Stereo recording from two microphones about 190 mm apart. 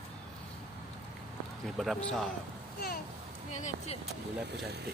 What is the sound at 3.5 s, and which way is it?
Speech, 40° left (ahead or behind).